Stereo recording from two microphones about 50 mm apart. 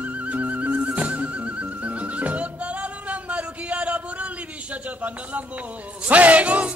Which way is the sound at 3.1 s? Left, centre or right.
Right.